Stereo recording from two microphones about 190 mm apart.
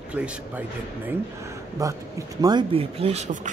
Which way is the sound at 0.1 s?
5° right (ahead or behind).